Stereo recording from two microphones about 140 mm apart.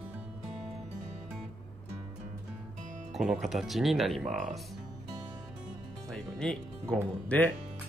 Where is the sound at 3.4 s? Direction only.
Centre (ahead or behind).